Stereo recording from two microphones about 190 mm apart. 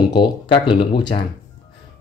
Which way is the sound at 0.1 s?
25° left (ahead or behind).